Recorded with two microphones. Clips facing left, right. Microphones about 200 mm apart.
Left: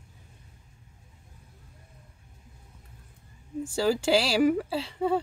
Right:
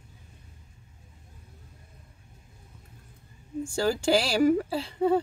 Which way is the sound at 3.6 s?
5° left (ahead or behind).